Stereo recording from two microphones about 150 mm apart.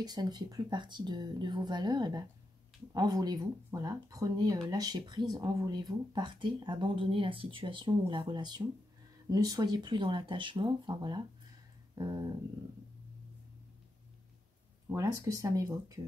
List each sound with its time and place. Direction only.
0.0 s speech: 25° right (ahead or behind)
11.9 s a sound: 25° right (ahead or behind)
14.9 s speech: 20° right (ahead or behind)